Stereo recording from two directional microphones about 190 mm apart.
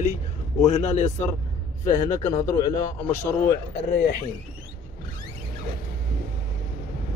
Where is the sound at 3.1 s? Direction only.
50° left (ahead or behind).